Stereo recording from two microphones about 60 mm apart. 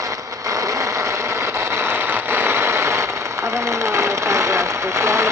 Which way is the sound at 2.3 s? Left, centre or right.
Right.